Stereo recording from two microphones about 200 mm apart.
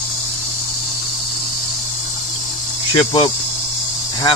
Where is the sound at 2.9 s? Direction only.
25° left (ahead or behind).